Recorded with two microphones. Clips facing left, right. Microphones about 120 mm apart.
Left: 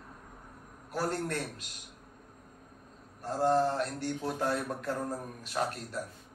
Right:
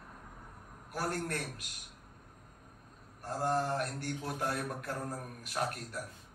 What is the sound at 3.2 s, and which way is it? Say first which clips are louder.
Speech: left 6 dB; 25° left (ahead or behind).